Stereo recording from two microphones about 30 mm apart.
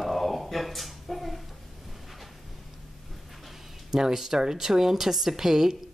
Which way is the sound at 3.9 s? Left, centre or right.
Centre.